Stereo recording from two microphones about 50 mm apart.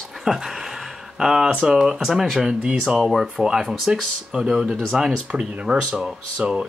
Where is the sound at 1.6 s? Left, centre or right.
Centre.